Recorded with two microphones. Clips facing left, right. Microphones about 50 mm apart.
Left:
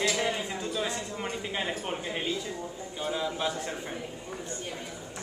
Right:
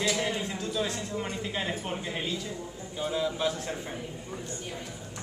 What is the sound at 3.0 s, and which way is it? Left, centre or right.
Speech, centre.